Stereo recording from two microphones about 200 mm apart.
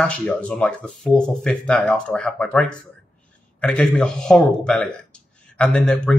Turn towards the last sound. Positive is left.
turn(degrees=5)  # may be behind; listen again after turning